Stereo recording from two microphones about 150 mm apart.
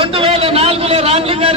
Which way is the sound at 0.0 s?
40° right (ahead or behind).